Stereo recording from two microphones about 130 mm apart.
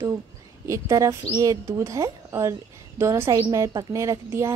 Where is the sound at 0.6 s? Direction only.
25° right (ahead or behind).